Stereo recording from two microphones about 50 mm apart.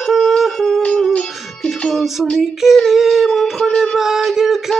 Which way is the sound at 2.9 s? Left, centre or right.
Centre.